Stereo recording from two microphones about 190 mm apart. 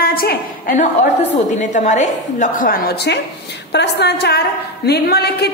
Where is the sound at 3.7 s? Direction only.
60° left (ahead or behind).